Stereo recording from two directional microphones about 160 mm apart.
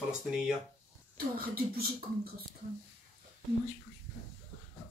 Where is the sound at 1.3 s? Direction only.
70° right (ahead or behind).